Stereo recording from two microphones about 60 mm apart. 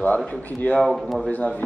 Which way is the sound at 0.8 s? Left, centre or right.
Centre.